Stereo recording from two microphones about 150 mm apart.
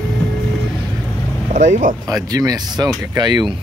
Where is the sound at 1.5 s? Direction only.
60° right (ahead or behind).